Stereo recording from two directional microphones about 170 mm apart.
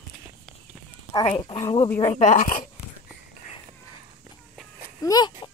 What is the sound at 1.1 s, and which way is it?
Speech, 25° left (ahead or behind).